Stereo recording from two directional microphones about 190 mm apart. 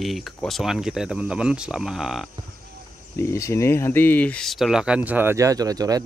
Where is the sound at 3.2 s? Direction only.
15° left (ahead or behind).